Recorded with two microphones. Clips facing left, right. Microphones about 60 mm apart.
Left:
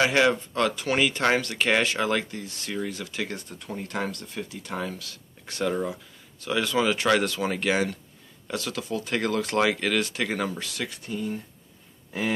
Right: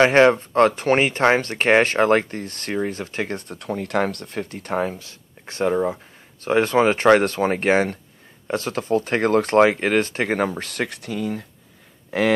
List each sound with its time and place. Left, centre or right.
0.0 s speech: right
3.5 s speech: right
11.0 s speech: right
12.1 s speech: right